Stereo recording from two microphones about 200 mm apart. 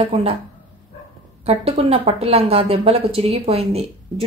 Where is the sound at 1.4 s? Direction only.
30° right (ahead or behind).